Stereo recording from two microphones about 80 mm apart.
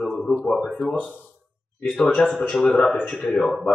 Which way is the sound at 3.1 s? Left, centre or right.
Centre.